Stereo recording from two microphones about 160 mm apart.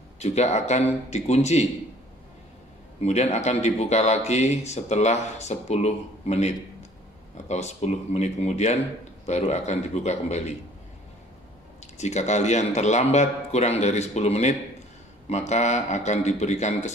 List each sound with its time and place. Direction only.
0.2 s speech: 45° left (ahead or behind)
3.0 s speech: 45° left (ahead or behind)
12.0 s speech: 45° left (ahead or behind)